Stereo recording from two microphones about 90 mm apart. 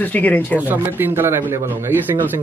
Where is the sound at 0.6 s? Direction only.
20° right (ahead or behind).